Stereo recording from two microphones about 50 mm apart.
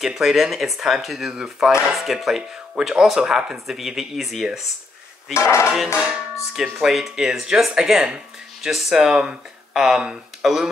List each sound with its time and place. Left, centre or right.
0.0 s speech: centre
5.3 s speech: left
5.9 s speech: centre
6.5 s speech: centre